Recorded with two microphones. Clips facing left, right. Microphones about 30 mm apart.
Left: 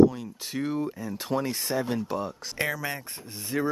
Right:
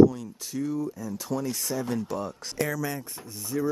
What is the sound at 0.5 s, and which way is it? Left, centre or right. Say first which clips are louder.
Speech: even; left.